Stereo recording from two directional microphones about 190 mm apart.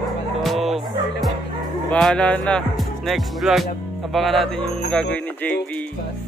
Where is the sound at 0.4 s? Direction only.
Centre (ahead or behind).